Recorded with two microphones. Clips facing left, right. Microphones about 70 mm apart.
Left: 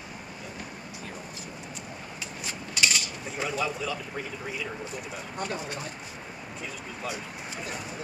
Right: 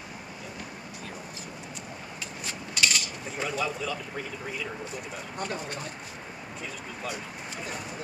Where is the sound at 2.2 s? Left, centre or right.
Centre.